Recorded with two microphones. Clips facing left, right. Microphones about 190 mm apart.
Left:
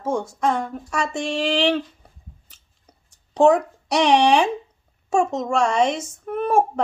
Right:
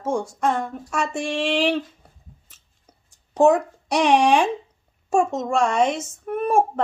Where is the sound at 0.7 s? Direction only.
5° right (ahead or behind).